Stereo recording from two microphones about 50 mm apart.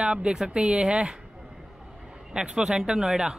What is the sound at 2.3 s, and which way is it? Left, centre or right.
Speech, centre.